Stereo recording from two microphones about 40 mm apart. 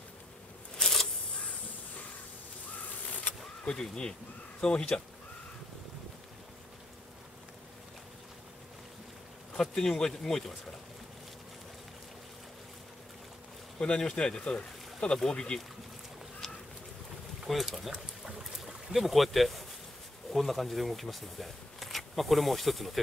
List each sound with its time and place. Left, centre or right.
0.7 s a sound: centre
3.6 s speech: centre
9.6 s speech: centre
13.7 s speech: centre
17.5 s speech: centre